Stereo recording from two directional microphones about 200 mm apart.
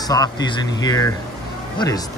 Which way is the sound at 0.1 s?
20° left (ahead or behind).